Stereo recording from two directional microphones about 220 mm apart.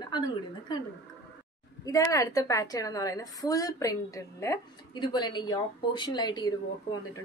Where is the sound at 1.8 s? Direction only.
15° left (ahead or behind).